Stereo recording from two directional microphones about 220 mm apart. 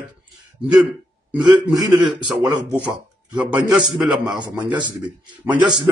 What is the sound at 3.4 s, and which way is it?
Speech, 5° right (ahead or behind).